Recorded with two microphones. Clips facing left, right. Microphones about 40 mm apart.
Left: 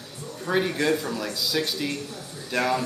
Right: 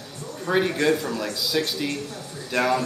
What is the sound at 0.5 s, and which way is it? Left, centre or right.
A man's voice, centre.